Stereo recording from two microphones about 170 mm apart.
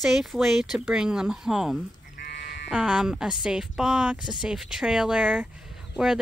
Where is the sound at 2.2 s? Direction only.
70° left (ahead or behind).